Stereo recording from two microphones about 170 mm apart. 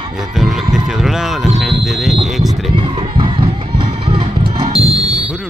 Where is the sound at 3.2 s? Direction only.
30° right (ahead or behind).